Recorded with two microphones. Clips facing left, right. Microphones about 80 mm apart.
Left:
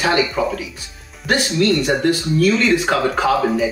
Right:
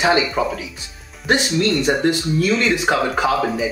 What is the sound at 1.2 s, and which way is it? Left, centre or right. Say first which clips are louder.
Speech: left 1 dB; right.